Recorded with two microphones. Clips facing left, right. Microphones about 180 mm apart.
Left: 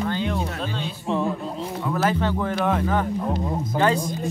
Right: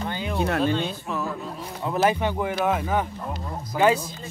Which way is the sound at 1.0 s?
30° left (ahead or behind).